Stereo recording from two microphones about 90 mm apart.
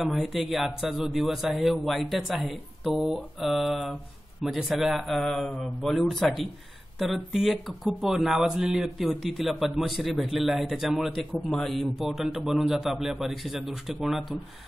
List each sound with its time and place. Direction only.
0.0 s speech: centre (ahead or behind)